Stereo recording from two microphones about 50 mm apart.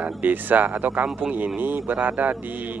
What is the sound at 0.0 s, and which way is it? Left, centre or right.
Speech, right.